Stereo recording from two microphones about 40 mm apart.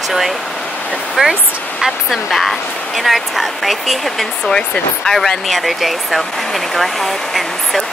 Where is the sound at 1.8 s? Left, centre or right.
Centre.